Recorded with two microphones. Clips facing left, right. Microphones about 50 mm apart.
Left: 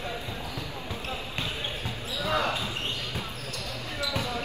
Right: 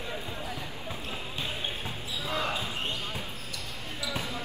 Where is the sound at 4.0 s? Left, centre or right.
Left.